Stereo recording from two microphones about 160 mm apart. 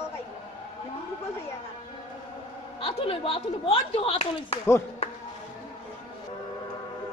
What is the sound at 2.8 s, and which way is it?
Speech, 35° left (ahead or behind).